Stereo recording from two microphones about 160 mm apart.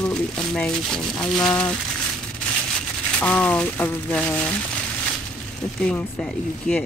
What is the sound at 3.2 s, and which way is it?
Speech, 10° left (ahead or behind).